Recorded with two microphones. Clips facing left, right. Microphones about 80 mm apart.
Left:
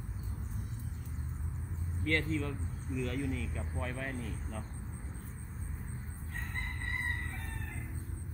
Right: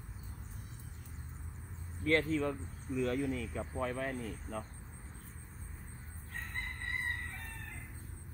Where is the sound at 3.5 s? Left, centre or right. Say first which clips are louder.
Right 3 dB; centre.